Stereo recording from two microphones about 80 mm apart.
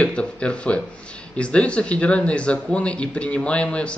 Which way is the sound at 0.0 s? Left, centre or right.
Centre.